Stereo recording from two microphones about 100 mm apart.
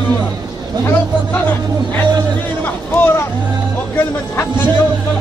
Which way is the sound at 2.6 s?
20° left (ahead or behind).